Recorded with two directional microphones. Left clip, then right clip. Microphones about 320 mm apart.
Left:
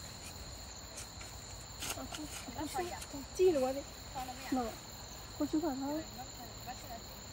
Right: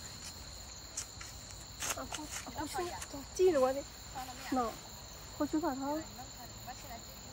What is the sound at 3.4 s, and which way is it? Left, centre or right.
Speech, centre.